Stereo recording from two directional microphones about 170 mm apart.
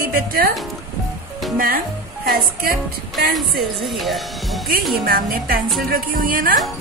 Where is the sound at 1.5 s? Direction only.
60° right (ahead or behind).